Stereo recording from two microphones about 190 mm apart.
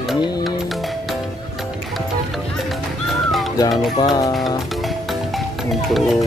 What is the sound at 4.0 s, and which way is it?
Speech, 20° left (ahead or behind).